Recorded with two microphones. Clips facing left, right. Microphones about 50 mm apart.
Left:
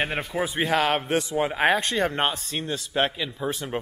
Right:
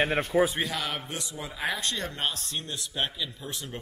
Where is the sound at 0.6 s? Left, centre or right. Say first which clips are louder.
Left 10 dB; left.